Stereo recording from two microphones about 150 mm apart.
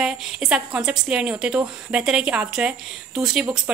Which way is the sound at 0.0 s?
5° right (ahead or behind).